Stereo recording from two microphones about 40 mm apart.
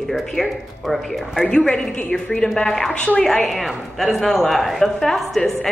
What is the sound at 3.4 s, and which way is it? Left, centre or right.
A woman's voice, centre.